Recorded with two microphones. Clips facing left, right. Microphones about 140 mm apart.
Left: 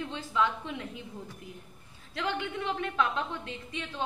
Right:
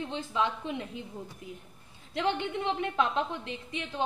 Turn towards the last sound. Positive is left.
turn(degrees=-20)  # may be behind; listen again after turning